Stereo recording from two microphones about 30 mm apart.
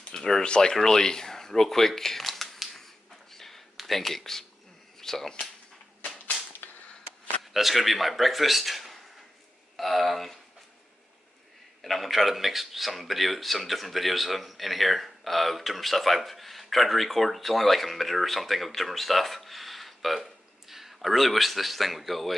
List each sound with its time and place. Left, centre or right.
0.1 s speech: centre
0.4 s speech: left
3.3 s a sound: centre
3.8 s speech: centre
7.5 s a man's voice: centre
11.8 s a man's voice: centre